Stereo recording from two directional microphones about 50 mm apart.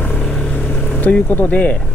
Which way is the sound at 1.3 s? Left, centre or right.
Left.